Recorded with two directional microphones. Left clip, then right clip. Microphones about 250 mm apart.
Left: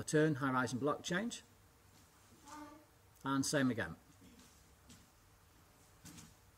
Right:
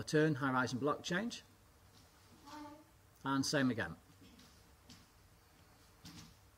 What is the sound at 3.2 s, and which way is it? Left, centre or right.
Speech, centre.